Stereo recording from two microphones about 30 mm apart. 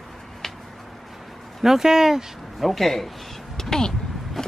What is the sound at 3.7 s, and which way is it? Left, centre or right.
Speech, centre.